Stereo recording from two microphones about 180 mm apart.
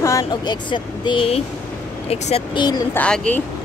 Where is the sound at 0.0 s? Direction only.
20° left (ahead or behind).